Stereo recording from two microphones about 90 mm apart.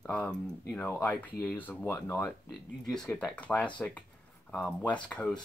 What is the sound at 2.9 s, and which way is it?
Speech, 5° left (ahead or behind).